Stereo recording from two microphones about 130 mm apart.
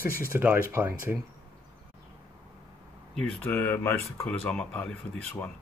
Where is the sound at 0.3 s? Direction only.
15° right (ahead or behind).